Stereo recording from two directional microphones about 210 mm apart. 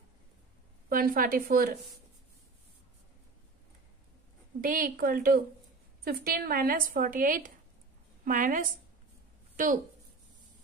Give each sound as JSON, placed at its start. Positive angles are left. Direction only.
{"t": 0.8, "sound": "a woman's voice", "side_deg": -40}
{"t": 4.6, "sound": "a woman's voice", "side_deg": -40}